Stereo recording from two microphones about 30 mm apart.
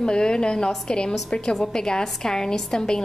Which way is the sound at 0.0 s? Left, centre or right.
Left.